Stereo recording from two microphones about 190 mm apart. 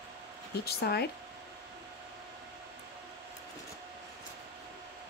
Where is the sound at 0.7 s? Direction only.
55° left (ahead or behind).